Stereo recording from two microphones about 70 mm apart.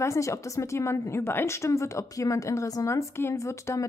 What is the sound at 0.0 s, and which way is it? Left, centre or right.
A woman's voice, left.